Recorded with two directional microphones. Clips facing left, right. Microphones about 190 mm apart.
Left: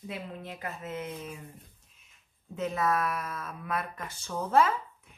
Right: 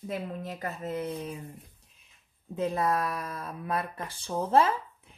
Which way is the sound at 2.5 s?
30° right (ahead or behind).